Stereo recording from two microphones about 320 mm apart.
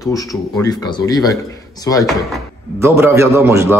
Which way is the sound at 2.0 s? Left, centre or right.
Centre.